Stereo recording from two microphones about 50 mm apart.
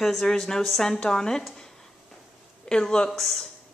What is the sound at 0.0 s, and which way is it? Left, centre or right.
Speech, centre.